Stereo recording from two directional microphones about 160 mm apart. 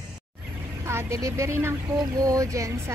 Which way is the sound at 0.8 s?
20° right (ahead or behind).